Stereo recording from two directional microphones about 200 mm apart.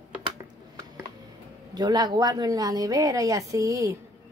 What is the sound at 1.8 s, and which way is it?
A woman's voice, 20° right (ahead or behind).